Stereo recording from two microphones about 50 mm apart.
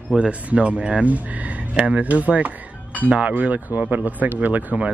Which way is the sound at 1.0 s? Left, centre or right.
Right.